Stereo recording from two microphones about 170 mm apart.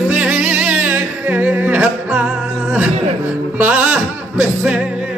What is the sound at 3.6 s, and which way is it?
Music, 10° right (ahead or behind).